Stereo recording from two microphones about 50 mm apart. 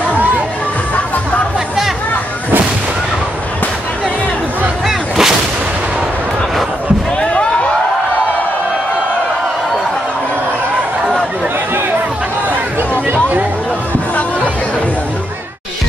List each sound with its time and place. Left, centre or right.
0.0 s crowd: right
4.8 s artillery fire: centre